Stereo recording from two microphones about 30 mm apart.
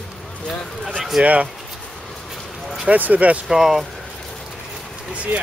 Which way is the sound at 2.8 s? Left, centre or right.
Right.